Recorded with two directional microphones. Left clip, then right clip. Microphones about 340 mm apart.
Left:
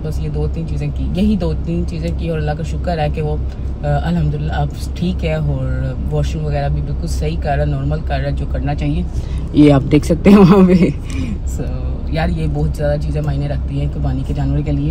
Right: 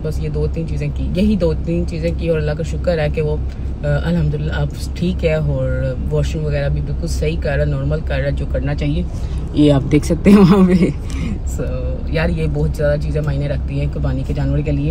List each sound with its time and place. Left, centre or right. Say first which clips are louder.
0.7 s speech: left 1 dB; centre
9.5 s a man's voice: left 3 dB; left
12.1 s speech: right 1 dB; centre